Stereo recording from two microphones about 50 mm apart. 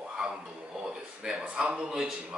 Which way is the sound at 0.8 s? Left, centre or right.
Centre.